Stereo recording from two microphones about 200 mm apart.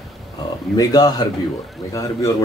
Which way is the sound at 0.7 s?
20° left (ahead or behind).